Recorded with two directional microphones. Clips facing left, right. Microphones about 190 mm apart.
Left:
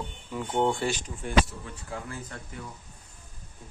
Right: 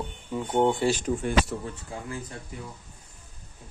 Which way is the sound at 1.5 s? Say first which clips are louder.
Right 10 dB; 70° right (ahead or behind).